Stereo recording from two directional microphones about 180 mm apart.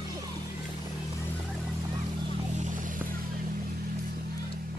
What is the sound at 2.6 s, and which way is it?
Vehicle, 45° right (ahead or behind).